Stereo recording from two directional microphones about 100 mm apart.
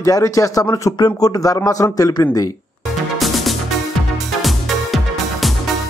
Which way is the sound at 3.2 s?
Centre (ahead or behind).